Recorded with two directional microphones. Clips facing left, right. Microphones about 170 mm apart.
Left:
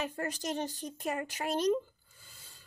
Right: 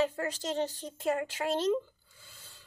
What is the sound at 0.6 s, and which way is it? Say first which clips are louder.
Speech: right 3 dB; 15° left (ahead or behind).